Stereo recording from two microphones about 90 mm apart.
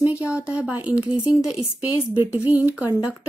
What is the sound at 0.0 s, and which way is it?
Speech, 15° right (ahead or behind).